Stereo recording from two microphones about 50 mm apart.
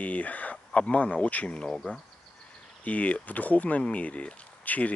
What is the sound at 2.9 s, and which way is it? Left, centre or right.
Speech, left.